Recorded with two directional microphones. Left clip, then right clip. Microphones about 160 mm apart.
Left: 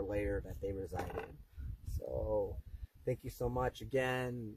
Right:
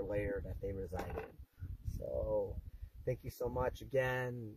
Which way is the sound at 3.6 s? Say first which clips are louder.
Right 1 dB; 40° left (ahead or behind).